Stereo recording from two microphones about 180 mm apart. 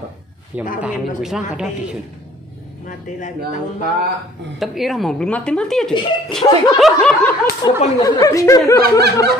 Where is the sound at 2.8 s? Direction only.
45° left (ahead or behind).